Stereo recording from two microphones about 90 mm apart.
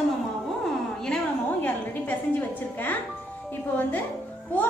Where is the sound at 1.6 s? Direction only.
20° left (ahead or behind).